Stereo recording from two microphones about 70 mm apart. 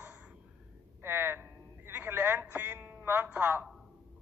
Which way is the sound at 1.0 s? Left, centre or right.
Right.